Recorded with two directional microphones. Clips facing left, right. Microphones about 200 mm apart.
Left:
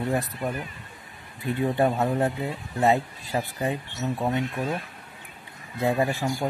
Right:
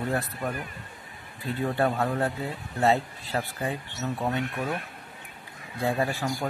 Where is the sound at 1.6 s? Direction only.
20° left (ahead or behind).